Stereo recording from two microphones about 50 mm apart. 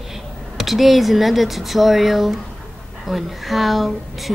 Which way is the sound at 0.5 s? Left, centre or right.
Centre.